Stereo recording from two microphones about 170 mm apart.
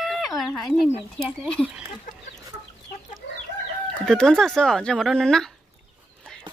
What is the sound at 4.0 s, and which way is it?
Speech, 5° left (ahead or behind).